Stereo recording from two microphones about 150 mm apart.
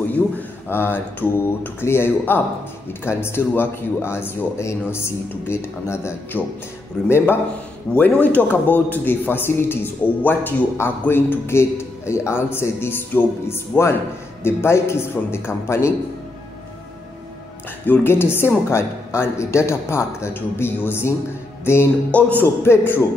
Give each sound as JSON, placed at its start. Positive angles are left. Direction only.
{"t": 0.7, "sound": "a man's voice", "side_deg": 15}
{"t": 17.8, "sound": "a man's voice", "side_deg": 15}